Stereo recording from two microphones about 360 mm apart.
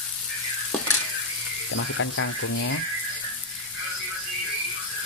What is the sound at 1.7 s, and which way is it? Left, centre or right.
Speech, left.